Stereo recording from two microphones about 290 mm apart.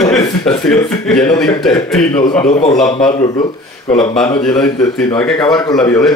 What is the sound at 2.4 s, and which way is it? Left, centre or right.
Speech, left.